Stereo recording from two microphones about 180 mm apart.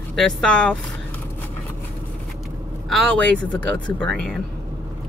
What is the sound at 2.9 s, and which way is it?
Speech, 5° left (ahead or behind).